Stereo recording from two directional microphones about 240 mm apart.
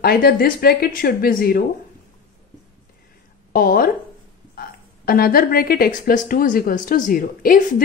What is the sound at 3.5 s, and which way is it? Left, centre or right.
A woman's voice, left.